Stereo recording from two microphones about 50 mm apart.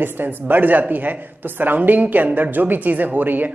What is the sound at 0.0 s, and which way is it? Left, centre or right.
A man's voice, right.